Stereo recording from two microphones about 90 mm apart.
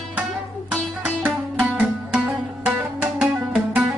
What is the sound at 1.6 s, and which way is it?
Music, 10° right (ahead or behind).